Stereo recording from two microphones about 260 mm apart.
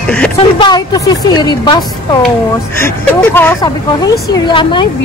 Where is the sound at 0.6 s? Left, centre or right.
Centre.